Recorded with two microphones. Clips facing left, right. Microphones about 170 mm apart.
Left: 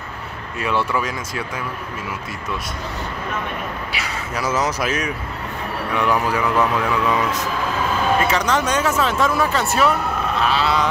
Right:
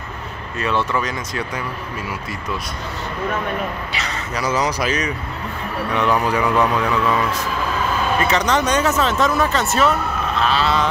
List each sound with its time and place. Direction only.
0.6 s speech: 10° left (ahead or behind)
3.9 s speech: 5° left (ahead or behind)
7.1 s speech: 20° left (ahead or behind)
8.2 s speech: 5° left (ahead or behind)